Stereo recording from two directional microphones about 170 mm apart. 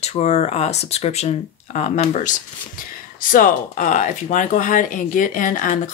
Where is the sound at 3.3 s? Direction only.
50° left (ahead or behind).